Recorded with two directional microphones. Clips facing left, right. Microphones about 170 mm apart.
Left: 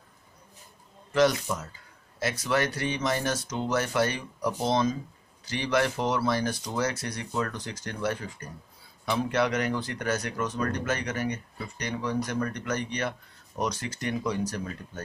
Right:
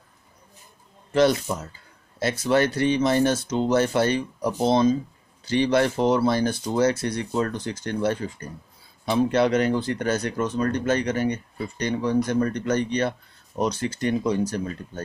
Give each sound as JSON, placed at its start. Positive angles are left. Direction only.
{"t": 1.1, "sound": "speech", "side_deg": -30}